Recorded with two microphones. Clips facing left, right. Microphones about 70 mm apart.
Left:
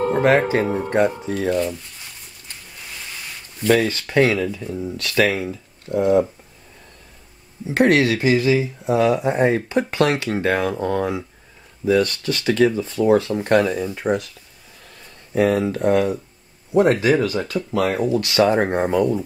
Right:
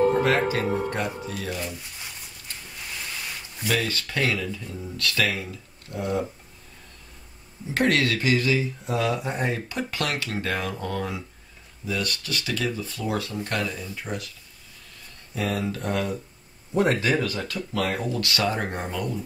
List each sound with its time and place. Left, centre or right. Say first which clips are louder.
0.1 s speech: left 5 dB; left
1.6 s a sound: left 10 dB; centre
3.8 s speech: left 9 dB; left
5.9 s speech: left 11 dB; left
7.6 s speech: left 7 dB; left
14.0 s speech: left 12 dB; left
15.3 s speech: left 10 dB; left